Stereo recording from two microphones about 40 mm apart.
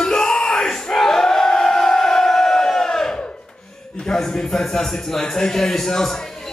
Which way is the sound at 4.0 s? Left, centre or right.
Centre.